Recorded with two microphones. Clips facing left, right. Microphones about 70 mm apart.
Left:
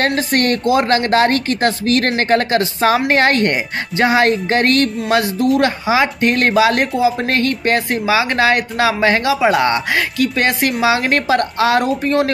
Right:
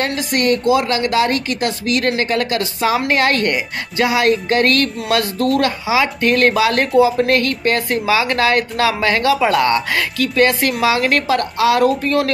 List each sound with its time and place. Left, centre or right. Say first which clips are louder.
0.0 s a woman's voice: left 2 dB; left